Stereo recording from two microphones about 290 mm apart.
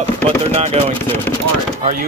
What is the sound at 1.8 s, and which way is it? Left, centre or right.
Speech, right.